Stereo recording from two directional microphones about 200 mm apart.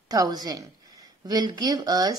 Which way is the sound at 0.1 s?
20° right (ahead or behind).